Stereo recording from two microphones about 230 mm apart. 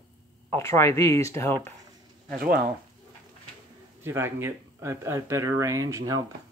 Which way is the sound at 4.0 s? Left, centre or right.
Centre.